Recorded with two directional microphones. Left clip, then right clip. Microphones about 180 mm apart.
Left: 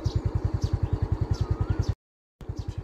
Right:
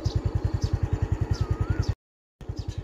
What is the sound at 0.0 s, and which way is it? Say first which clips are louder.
Vehicle: right 1 dB; centre (ahead or behind).